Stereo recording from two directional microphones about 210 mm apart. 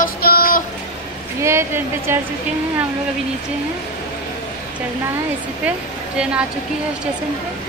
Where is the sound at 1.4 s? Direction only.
10° right (ahead or behind).